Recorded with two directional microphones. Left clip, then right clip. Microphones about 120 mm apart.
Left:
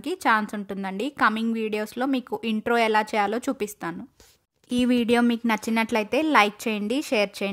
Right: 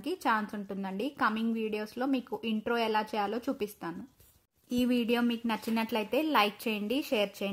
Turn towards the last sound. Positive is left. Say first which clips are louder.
# left 6 dB
turn(degrees=15)  # may be behind; listen again after turning